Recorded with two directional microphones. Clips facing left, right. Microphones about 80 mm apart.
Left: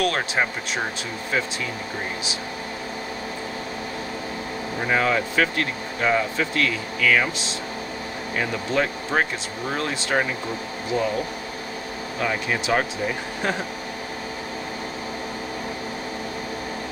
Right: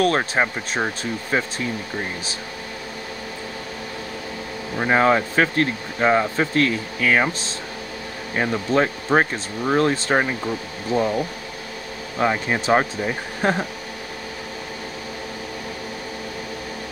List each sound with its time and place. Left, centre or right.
0.0 s speech: right
4.8 s speech: right
12.2 s speech: right